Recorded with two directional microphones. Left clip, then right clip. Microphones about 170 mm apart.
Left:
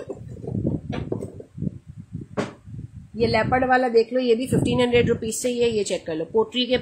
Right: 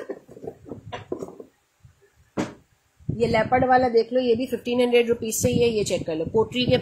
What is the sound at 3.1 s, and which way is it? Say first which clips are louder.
A woman's voice: even; 20° left (ahead or behind).